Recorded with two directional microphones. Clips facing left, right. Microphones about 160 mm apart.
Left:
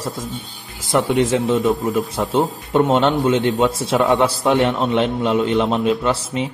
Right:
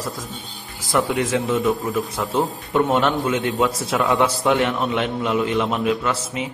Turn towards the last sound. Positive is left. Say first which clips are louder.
# left 4 dB
turn(degrees=30)  # may be behind; listen again after turning